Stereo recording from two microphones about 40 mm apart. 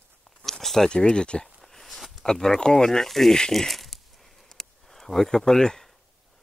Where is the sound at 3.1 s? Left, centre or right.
Centre.